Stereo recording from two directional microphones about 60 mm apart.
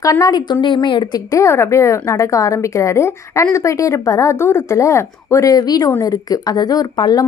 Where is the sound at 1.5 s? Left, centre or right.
Left.